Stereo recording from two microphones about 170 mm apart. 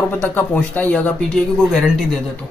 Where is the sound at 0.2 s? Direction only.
10° left (ahead or behind).